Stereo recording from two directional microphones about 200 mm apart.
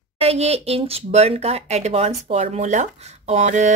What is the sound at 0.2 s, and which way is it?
Speech, 30° right (ahead or behind).